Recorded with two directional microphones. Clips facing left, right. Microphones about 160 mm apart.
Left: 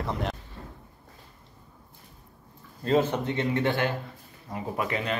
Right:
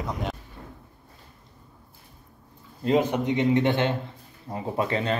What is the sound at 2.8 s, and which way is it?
A man's voice, 15° right (ahead or behind).